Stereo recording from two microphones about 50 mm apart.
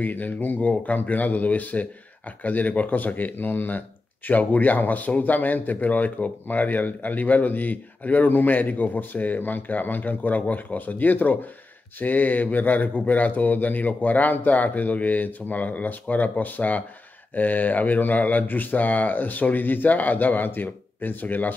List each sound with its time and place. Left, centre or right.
0.0 s a man's voice: left